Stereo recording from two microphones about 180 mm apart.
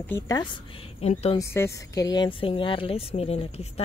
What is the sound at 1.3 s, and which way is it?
Speech, 15° left (ahead or behind).